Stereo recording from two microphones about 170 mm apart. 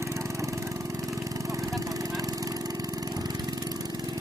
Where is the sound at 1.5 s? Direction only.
20° right (ahead or behind).